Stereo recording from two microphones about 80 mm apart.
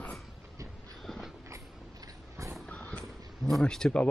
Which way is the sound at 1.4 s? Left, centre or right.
Right.